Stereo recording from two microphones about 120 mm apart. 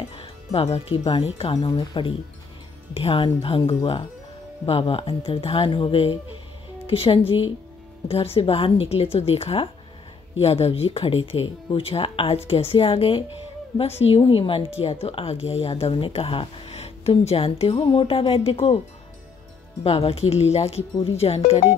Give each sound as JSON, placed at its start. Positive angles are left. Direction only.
{"t": 0.1, "sound": "speech", "side_deg": 55}
{"t": 1.7, "sound": "speech", "side_deg": 40}
{"t": 19.8, "sound": "speech", "side_deg": 55}